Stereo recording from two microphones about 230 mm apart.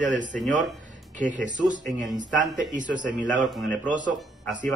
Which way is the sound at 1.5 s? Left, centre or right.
Right.